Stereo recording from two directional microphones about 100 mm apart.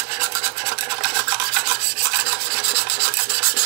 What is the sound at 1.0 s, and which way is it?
Rub, 25° right (ahead or behind).